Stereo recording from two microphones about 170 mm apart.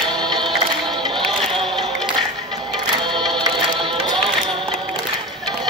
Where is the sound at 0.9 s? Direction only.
30° right (ahead or behind).